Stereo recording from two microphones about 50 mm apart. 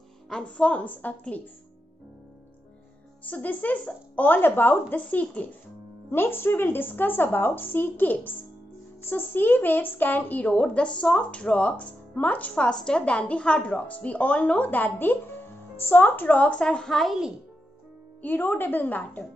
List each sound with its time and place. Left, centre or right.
0.3 s speech: centre
0.7 s speech: left
3.3 s speech: left
6.0 s speech: left
10.5 s speech: left
12.5 s speech: centre
17.0 s speech: centre
18.2 s speech: left